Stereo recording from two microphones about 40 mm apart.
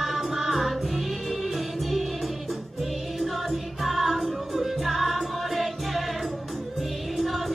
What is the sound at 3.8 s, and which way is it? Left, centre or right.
Music, centre.